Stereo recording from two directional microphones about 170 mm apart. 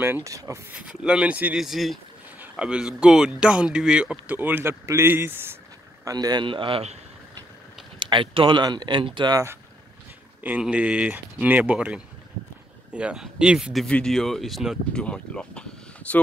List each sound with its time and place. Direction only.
0.0 s speech: 15° right (ahead or behind)
0.7 s speech: 5° right (ahead or behind); by 7.0 s 35° right (ahead or behind)
8.0 s speech: 30° right (ahead or behind)
10.4 s speech: 10° right (ahead or behind)